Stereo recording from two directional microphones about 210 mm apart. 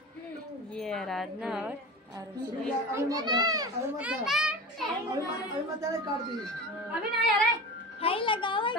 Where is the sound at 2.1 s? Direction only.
15° right (ahead or behind).